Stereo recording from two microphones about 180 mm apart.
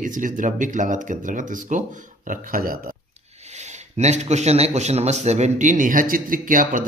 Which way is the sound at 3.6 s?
40° right (ahead or behind).